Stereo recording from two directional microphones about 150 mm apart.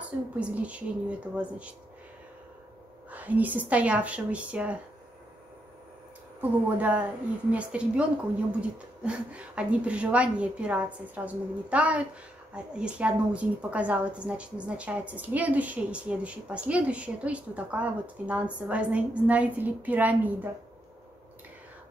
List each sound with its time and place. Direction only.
0.0 s a woman's voice: 10° right (ahead or behind)
3.1 s a woman's voice: 10° right (ahead or behind)
6.4 s a woman's voice: 10° right (ahead or behind)